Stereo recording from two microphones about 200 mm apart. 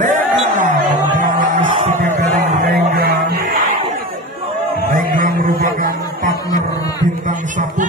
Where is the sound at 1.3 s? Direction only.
40° right (ahead or behind).